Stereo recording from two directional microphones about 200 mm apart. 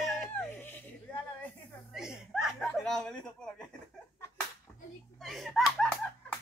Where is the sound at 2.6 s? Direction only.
5° left (ahead or behind).